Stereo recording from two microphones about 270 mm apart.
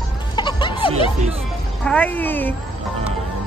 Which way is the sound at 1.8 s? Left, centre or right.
Centre.